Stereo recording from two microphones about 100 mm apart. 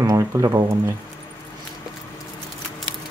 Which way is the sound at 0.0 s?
30° right (ahead or behind).